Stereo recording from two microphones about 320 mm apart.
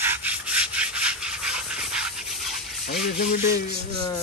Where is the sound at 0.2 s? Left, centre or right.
Centre.